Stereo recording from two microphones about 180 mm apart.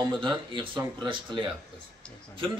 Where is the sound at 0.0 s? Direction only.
25° right (ahead or behind).